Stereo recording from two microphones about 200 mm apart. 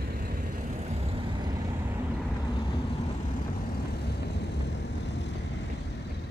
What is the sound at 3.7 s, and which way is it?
Vehicle, 55° left (ahead or behind).